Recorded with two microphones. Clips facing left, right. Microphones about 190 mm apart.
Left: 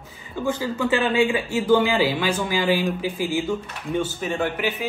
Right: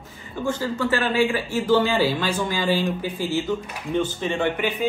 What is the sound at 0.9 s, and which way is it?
A man's voice, 20° left (ahead or behind).